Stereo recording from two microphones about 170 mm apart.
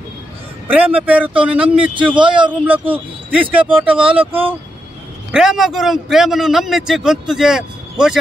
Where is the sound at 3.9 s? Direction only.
30° right (ahead or behind).